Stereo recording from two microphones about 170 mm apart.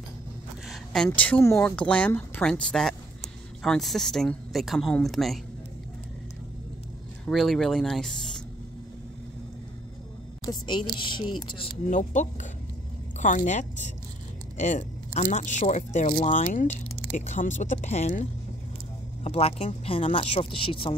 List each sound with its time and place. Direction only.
0.7 s speech: 5° left (ahead or behind)
7.2 s speech: centre (ahead or behind)
10.4 s speech: 25° left (ahead or behind)
11.9 s speech: 45° left (ahead or behind); by 20.9 s 30° left (ahead or behind)